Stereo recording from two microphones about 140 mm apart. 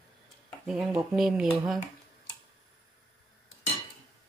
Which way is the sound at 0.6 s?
5° right (ahead or behind).